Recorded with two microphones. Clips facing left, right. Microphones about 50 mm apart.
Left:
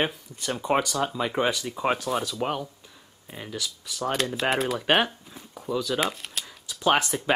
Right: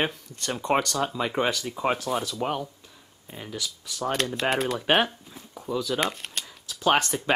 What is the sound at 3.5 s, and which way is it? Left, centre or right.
Speech, centre.